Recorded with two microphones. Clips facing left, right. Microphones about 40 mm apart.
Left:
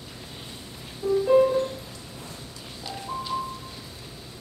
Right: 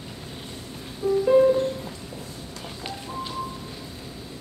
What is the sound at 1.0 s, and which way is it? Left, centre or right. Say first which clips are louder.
Music: right 1 dB; right.